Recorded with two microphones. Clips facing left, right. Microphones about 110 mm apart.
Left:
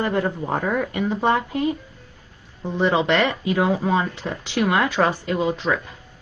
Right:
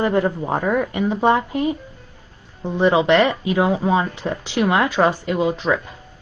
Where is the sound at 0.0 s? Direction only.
15° right (ahead or behind).